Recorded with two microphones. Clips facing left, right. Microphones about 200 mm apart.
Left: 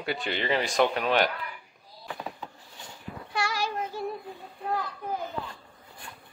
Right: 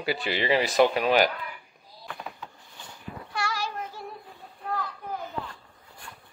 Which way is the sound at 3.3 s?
15° left (ahead or behind).